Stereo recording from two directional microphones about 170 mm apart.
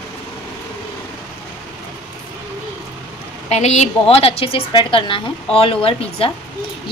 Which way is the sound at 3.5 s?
40° left (ahead or behind).